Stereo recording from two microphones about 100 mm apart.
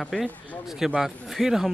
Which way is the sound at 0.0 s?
Centre (ahead or behind).